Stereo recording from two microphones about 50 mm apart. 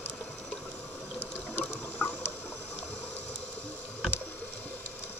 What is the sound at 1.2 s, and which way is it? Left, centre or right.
Water, left.